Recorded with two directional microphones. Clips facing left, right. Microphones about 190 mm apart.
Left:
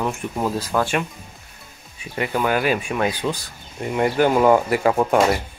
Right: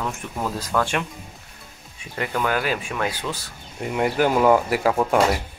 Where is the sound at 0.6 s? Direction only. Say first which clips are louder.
Right 1 dB; 10° left (ahead or behind).